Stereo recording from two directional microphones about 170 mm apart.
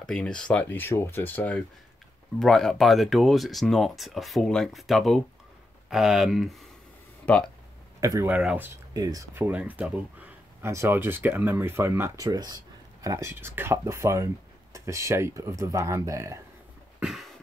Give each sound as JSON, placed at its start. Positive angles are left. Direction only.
{"t": 0.0, "sound": "speech", "side_deg": 5}
{"t": 8.0, "sound": "speech", "side_deg": -20}
{"t": 8.3, "sound": "speech", "side_deg": -5}
{"t": 8.9, "sound": "speech", "side_deg": -20}
{"t": 17.0, "sound": "a sound", "side_deg": 0}